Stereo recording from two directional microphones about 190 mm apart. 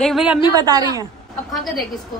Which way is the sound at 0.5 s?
20° right (ahead or behind).